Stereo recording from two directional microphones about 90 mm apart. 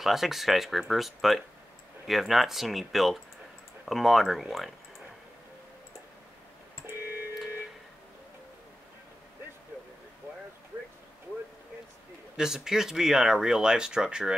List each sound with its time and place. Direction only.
0.0 s speech: 5° right (ahead or behind)
6.9 s telephone: 25° right (ahead or behind)
12.4 s speech: 5° right (ahead or behind)